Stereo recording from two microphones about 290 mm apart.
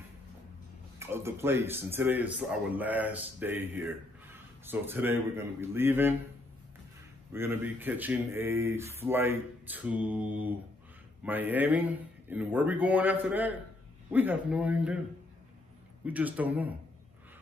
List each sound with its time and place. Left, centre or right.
0.9 s a man's voice: centre
7.3 s a man's voice: centre
16.1 s speech: centre